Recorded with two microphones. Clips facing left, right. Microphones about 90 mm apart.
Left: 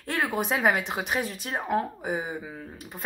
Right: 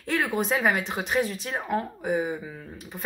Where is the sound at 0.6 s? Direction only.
5° left (ahead or behind).